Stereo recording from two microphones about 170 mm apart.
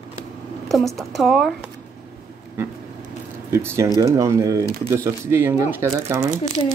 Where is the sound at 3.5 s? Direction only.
15° right (ahead or behind).